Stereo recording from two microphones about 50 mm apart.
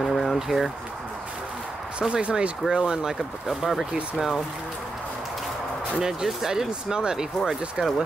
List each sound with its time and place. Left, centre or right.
0.0 s a sound: centre
2.0 s speech: centre
5.9 s speech: centre